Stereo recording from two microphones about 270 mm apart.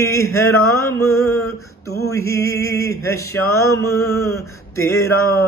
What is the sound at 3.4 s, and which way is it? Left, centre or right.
Mantra, left.